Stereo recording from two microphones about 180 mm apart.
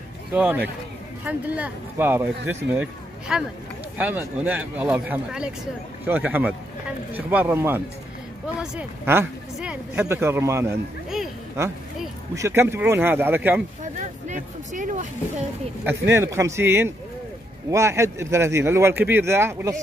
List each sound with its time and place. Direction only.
0.3 s speech: 10° right (ahead or behind)
12.4 s speech: 15° right (ahead or behind)
13.9 s speech: 40° right (ahead or behind)
15.8 s speech: 15° right (ahead or behind)